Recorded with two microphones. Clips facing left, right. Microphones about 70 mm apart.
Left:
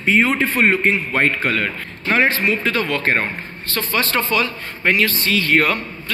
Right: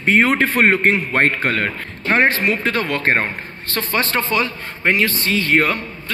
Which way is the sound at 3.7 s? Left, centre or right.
Right.